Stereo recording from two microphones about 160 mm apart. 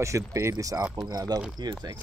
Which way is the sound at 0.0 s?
20° right (ahead or behind).